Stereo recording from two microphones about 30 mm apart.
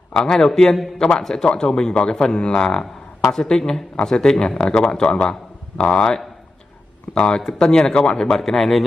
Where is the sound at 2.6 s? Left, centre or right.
Centre; by 8.3 s left.